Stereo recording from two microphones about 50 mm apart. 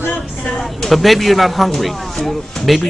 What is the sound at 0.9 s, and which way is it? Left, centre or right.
Speech, centre.